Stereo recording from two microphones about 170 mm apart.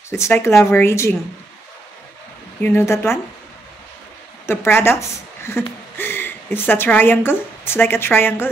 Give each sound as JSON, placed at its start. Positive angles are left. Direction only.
{"t": 0.1, "sound": "speech", "side_deg": 15}
{"t": 2.6, "sound": "speech", "side_deg": 15}
{"t": 4.5, "sound": "a woman's voice", "side_deg": 15}